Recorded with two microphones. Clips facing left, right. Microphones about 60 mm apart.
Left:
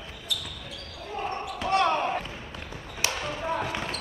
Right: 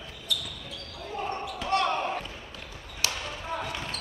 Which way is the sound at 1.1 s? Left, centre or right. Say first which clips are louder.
Left 1 dB; centre.